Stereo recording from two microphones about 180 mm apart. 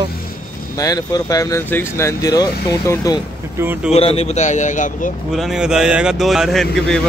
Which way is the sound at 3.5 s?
10° right (ahead or behind).